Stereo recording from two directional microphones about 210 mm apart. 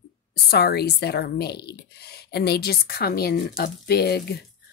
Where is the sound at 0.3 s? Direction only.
50° left (ahead or behind).